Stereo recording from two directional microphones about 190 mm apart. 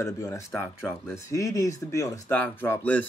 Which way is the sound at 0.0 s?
15° left (ahead or behind).